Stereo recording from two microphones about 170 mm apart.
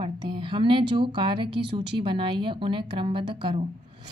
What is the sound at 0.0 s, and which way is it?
A woman's voice, 30° right (ahead or behind).